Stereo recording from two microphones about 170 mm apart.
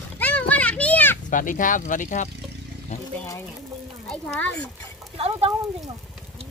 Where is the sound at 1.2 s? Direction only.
50° left (ahead or behind).